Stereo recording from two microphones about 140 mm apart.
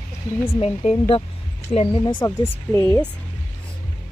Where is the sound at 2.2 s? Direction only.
20° left (ahead or behind).